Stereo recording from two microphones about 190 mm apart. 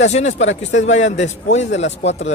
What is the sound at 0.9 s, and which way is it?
Speech, 35° left (ahead or behind).